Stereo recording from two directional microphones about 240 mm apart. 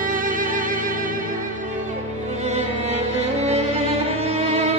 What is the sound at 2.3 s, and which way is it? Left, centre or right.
Music, right.